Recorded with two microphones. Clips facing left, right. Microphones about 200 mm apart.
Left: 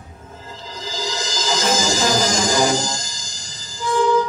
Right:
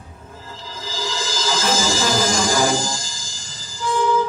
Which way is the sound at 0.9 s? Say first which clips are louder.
Even; 20° left (ahead or behind).